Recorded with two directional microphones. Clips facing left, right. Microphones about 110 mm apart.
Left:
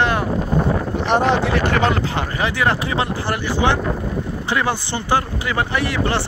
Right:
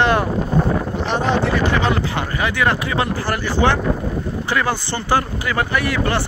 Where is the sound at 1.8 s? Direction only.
35° left (ahead or behind).